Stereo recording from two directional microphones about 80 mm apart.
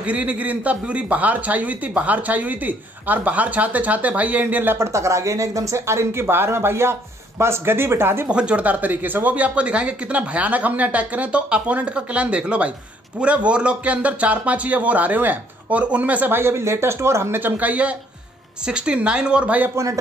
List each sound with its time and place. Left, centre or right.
0.0 s a man's voice: centre
4.7 s speech: right
8.3 s a man's voice: centre
19.7 s speech: right